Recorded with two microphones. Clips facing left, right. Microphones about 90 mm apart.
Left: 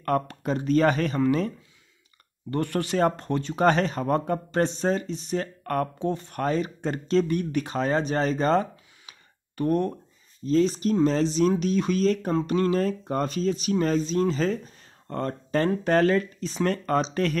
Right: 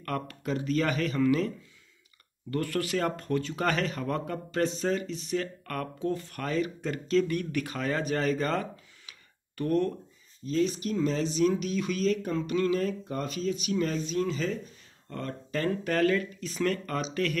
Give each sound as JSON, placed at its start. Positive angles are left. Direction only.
{"t": 0.0, "sound": "speech", "side_deg": 30}
{"t": 2.5, "sound": "speech", "side_deg": 25}
{"t": 5.9, "sound": "speech", "side_deg": 20}
{"t": 10.4, "sound": "speech", "side_deg": 35}